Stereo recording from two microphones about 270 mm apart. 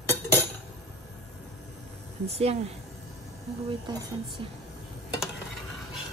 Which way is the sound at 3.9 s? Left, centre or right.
Centre.